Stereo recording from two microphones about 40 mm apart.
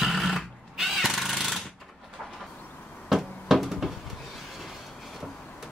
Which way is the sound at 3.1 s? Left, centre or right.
Centre.